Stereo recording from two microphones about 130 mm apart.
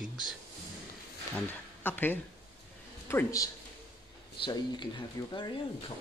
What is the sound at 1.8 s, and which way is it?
Speech, 15° left (ahead or behind).